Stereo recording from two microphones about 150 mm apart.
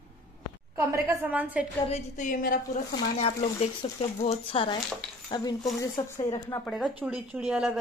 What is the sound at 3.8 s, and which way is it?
Speech, 40° left (ahead or behind).